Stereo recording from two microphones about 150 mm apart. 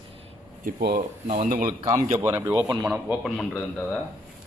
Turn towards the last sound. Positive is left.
turn(degrees=5)  # may be behind; listen again after turning